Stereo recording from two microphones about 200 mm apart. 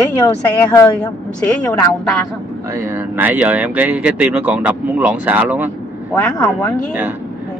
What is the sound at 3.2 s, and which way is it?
Speech, 10° right (ahead or behind).